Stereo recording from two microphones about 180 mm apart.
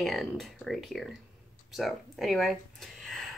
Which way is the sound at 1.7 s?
Centre (ahead or behind).